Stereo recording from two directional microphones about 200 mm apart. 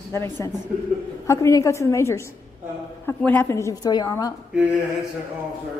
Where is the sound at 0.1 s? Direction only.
15° left (ahead or behind).